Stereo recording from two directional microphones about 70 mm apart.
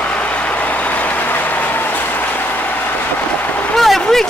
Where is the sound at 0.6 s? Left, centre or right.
Left.